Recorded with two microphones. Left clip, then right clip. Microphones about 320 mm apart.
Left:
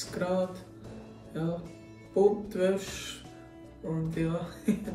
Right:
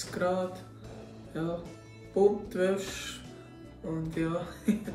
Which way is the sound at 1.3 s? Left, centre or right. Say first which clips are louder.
Even; centre.